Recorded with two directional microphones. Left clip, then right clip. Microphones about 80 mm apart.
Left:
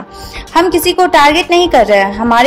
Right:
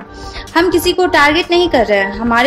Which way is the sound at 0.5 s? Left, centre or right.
Left.